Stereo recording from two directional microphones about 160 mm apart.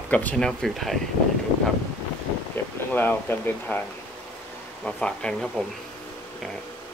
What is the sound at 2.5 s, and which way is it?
Speech, 10° left (ahead or behind).